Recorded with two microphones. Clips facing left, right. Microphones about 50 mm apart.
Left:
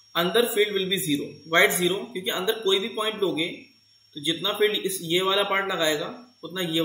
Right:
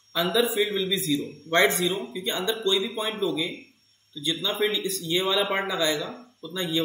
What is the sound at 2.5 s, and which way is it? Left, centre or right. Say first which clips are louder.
A man's voice: left 2 dB; centre.